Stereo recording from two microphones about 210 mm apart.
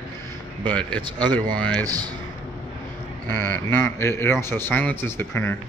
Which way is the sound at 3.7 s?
10° left (ahead or behind).